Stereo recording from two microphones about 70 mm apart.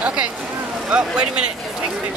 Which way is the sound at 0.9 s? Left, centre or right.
Centre.